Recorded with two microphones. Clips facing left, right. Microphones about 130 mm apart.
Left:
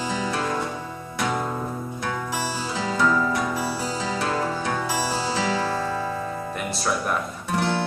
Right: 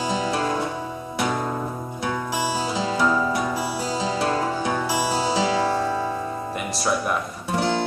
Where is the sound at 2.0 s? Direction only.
15° right (ahead or behind).